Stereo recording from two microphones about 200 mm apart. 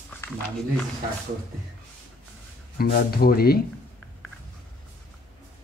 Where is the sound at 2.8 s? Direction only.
50° left (ahead or behind).